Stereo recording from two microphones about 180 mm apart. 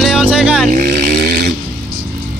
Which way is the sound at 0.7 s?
55° right (ahead or behind).